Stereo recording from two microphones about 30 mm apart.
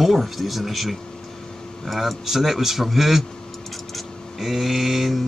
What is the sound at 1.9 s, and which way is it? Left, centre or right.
Speech, centre.